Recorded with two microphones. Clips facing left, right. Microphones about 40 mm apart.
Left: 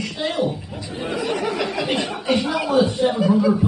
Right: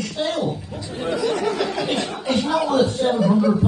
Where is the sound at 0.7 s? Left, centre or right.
Centre.